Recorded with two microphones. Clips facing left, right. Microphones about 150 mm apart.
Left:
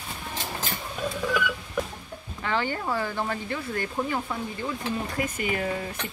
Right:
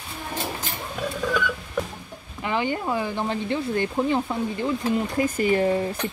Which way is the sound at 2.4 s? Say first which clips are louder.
Right 3 dB; 15° right (ahead or behind).